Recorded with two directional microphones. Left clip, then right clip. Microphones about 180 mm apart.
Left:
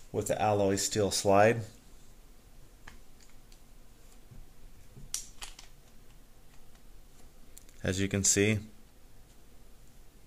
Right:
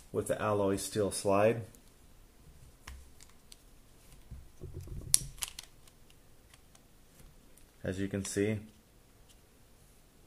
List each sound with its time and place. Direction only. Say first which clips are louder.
0.1 s speech: left 3 dB; 20° right (ahead or behind)
5.1 s typing: right 6 dB; 25° right (ahead or behind)
7.8 s speech: left 6 dB; 10° left (ahead or behind)